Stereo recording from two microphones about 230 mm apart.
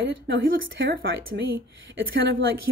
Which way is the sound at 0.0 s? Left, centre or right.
Right.